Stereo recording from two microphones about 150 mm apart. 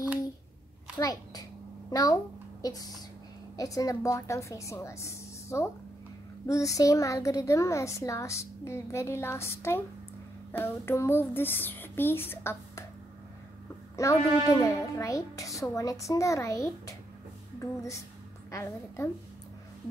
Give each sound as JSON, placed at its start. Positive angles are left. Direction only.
{"t": 0.9, "sound": "a child's voice", "side_deg": 25}
{"t": 14.0, "sound": "a child's voice", "side_deg": 20}